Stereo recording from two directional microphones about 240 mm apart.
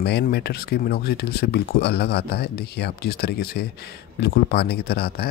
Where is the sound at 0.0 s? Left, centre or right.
Left.